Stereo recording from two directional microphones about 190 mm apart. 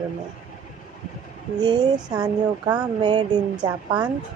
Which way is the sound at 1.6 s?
20° right (ahead or behind).